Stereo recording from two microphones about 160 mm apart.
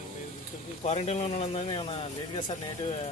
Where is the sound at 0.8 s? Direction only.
45° left (ahead or behind).